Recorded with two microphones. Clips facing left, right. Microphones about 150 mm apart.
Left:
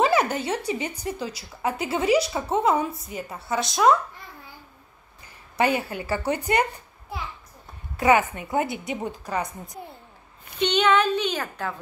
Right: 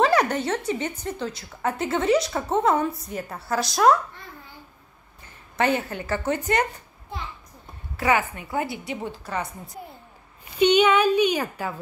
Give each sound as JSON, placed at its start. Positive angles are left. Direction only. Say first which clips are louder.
{"t": 0.0, "sound": "a sound", "louder": "right 1 dB", "side_deg": 0}
{"t": 0.7, "sound": "a woman's voice", "louder": "right 1 dB", "side_deg": 10}
{"t": 5.6, "sound": "a woman's voice", "louder": "even", "side_deg": 10}
{"t": 8.0, "sound": "a woman's voice", "louder": "left 3 dB", "side_deg": 20}
{"t": 10.6, "sound": "a woman's voice", "louder": "right 3 dB", "side_deg": -10}